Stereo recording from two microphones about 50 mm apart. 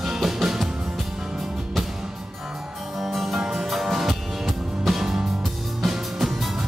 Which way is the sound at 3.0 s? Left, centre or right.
Centre.